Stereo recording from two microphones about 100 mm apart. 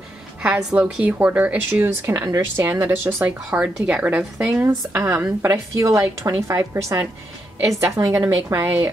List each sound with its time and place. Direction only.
0.4 s a woman's voice: 10° right (ahead or behind)
3.4 s a woman's voice: 15° right (ahead or behind)
4.9 s a woman's voice: 30° right (ahead or behind)